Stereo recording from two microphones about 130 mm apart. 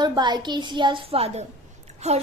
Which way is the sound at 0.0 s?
35° right (ahead or behind).